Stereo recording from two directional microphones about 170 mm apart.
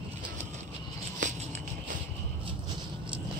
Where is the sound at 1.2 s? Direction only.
40° right (ahead or behind).